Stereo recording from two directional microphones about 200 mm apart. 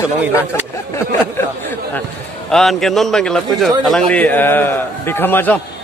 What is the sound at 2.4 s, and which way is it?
A man's voice, centre (ahead or behind).